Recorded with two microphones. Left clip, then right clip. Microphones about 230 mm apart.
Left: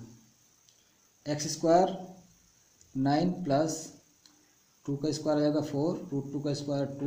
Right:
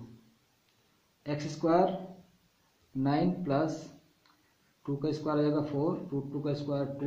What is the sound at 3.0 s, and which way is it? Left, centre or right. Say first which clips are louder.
Speech: left 2 dB; left.